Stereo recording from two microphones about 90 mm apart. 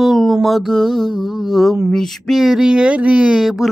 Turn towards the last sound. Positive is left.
turn(degrees=-5)  # may be behind; listen again after turning